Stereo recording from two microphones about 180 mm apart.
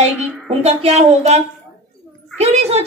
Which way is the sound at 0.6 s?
35° right (ahead or behind).